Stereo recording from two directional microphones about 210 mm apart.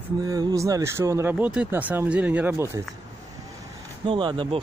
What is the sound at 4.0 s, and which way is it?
Speech, 25° right (ahead or behind).